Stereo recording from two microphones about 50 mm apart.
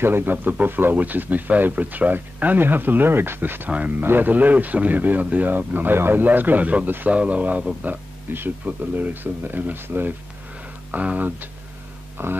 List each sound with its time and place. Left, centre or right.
0.0 s speech: right
3.7 s speech: right
4.0 s speech: right
4.3 s speech: right
10.9 s speech: right
12.2 s speech: right